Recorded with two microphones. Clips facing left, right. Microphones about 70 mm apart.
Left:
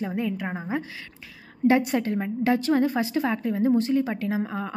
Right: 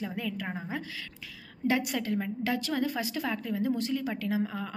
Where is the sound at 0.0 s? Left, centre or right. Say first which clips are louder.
Left 7 dB; left.